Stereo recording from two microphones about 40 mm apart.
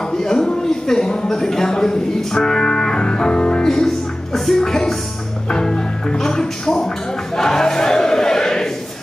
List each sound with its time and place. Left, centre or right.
0.1 s a sound: centre
3.6 s music: centre
5.5 s speech: centre
7.3 s choir: centre